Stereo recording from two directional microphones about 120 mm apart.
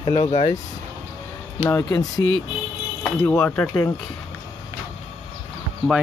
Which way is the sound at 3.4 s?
15° left (ahead or behind).